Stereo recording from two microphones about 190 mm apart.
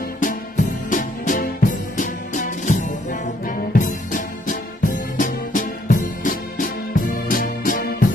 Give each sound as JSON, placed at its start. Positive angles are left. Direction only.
{"t": 0.2, "sound": "music", "side_deg": 45}